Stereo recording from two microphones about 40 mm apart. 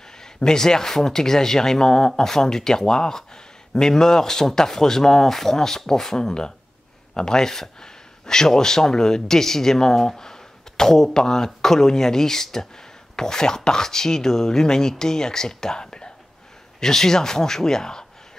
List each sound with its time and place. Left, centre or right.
0.2 s speech: centre